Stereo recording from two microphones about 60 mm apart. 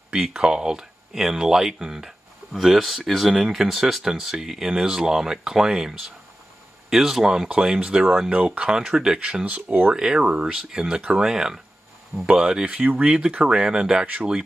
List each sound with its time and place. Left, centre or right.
0.1 s speech: centre
9.9 s speech: centre